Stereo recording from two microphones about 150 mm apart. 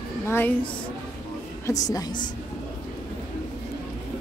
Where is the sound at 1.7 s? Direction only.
25° left (ahead or behind).